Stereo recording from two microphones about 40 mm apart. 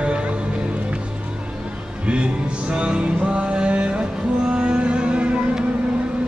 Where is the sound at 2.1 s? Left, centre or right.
Right.